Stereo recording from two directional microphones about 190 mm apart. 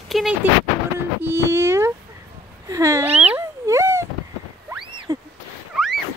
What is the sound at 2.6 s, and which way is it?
Cat, 15° right (ahead or behind).